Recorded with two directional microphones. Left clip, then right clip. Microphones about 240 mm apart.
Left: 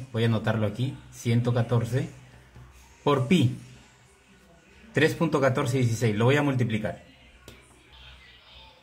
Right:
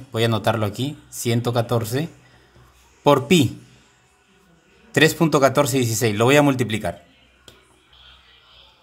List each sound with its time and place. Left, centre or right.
0.1 s speech: right
4.9 s speech: right